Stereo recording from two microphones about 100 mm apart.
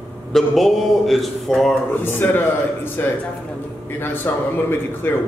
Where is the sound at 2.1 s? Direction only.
20° left (ahead or behind).